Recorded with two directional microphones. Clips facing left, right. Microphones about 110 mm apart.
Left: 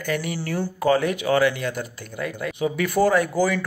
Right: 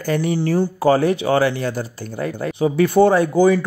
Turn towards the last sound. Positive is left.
turn(degrees=-25)  # may be behind; listen again after turning